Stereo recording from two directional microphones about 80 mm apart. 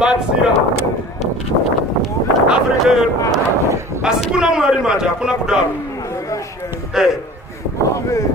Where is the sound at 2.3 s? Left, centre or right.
Centre.